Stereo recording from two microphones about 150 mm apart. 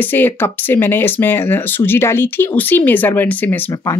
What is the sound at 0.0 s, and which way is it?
Speech, 15° left (ahead or behind).